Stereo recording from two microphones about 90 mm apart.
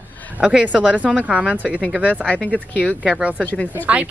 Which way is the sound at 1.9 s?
15° right (ahead or behind).